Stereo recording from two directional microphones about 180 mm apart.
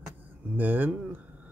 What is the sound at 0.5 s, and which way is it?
Speech, 10° right (ahead or behind).